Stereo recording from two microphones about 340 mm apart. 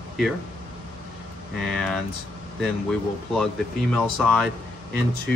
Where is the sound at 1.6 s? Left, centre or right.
Centre.